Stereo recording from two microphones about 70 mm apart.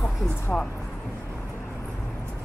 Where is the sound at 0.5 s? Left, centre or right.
Centre.